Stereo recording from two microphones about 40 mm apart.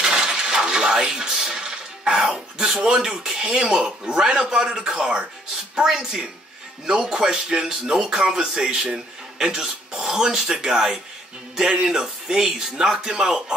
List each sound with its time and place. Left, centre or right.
0.0 s a sound: centre
0.6 s music: centre
4.2 s speech: centre